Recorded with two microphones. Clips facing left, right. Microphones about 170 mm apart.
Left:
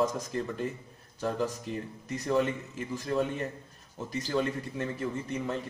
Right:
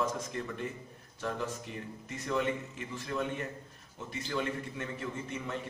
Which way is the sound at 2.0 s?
35° left (ahead or behind).